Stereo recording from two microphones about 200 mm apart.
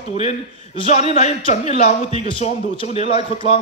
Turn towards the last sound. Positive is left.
turn(degrees=30)  # may be behind; listen again after turning